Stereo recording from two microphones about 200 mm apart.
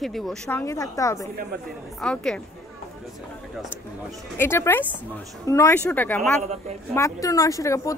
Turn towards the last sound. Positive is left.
turn(degrees=15)  # may be behind; listen again after turning